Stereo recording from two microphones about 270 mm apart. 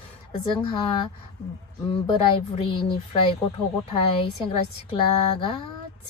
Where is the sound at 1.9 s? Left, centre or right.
Centre.